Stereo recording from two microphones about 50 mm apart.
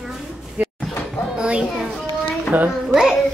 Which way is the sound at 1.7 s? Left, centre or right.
Centre.